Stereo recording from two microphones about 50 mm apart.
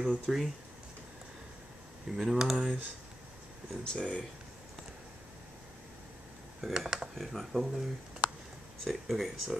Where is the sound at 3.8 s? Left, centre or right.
Centre.